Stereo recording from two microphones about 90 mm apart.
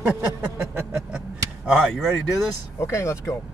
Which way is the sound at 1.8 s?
5° left (ahead or behind).